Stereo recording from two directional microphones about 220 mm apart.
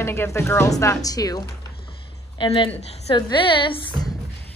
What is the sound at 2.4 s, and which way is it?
A woman's voice, 25° left (ahead or behind).